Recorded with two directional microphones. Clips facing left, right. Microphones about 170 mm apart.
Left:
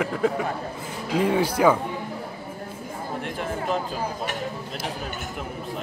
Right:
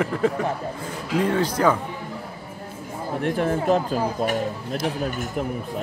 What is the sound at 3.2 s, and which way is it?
Speech, 50° right (ahead or behind).